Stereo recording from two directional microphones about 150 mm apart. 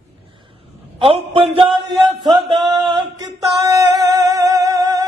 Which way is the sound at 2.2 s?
30° right (ahead or behind).